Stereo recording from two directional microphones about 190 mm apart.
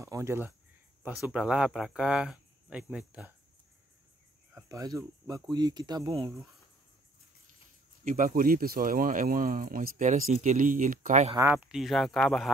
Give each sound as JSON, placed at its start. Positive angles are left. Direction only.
{"t": 0.0, "sound": "speech", "side_deg": -15}
{"t": 1.2, "sound": "speech", "side_deg": -5}
{"t": 4.6, "sound": "speech", "side_deg": -20}
{"t": 8.0, "sound": "speech", "side_deg": -45}
{"t": 11.3, "sound": "speech", "side_deg": -10}